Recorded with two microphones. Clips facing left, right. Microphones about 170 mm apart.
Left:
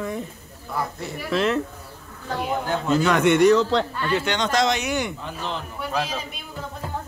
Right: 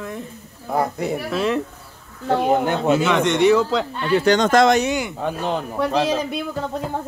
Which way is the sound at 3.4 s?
5° right (ahead or behind).